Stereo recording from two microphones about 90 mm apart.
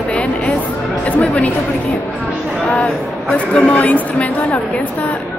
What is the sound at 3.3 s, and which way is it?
Speech, 15° left (ahead or behind).